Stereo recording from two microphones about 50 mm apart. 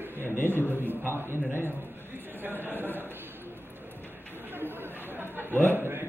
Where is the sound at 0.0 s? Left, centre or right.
Right.